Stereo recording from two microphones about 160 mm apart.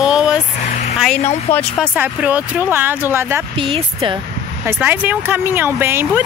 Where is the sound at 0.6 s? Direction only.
45° left (ahead or behind).